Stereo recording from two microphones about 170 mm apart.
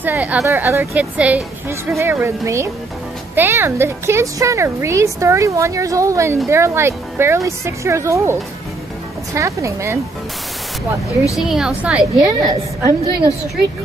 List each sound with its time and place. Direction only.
0.0 s a woman's voice: 10° right (ahead or behind)
11.3 s a woman's voice: centre (ahead or behind)
12.2 s a woman's voice: 25° right (ahead or behind)